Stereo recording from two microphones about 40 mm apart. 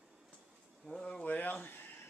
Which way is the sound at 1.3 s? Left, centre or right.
Left.